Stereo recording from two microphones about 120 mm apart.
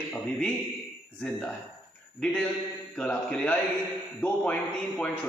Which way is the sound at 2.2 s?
10° left (ahead or behind).